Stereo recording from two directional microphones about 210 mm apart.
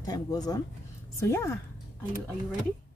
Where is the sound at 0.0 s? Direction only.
20° left (ahead or behind).